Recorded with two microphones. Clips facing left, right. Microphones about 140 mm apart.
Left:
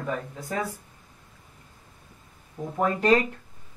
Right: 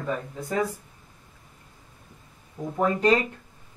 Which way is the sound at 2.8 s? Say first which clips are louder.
Even; centre (ahead or behind).